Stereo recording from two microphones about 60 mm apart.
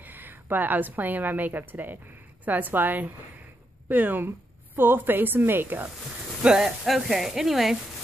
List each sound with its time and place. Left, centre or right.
0.0 s a woman's voice: right
6.4 s speech: centre